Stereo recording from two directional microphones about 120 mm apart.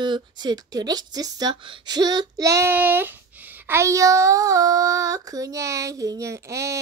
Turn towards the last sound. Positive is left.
turn(degrees=-25)  # may be behind; listen again after turning